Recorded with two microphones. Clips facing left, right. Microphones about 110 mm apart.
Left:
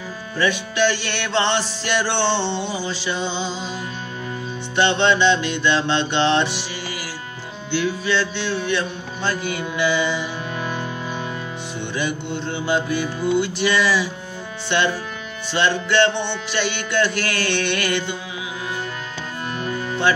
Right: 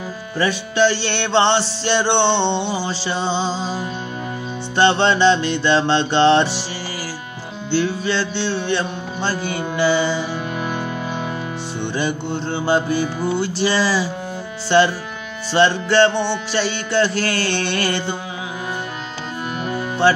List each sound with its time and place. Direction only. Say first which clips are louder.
0.4 s music: right 3 dB; 35° right (ahead or behind)
7.7 s music: right 2 dB; 30° right (ahead or behind)
10.6 s music: right 3 dB; 20° right (ahead or behind)
11.9 s music: right 2 dB; 35° right (ahead or behind)